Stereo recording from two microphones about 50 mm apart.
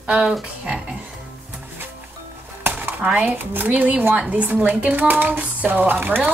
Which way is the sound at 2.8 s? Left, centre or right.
Right.